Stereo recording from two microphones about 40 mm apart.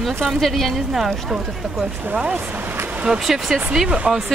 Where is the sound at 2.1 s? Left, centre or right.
Right.